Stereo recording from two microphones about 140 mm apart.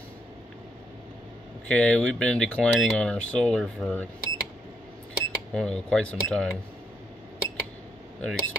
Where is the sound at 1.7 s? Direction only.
10° left (ahead or behind).